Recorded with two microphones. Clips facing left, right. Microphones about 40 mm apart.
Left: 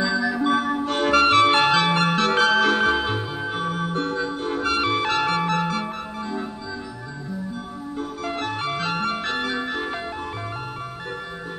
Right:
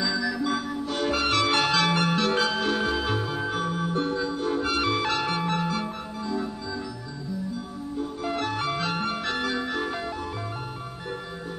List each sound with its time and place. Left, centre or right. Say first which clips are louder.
0.0 s music: left 4 dB; left
0.4 s music: left 6 dB; left
2.0 s music: left 4 dB; left
2.5 s music: left 7 dB; left
3.0 s music: left 2 dB; left
3.6 s music: left 2 dB; left
8.3 s ice cream truck: left 1 dB; left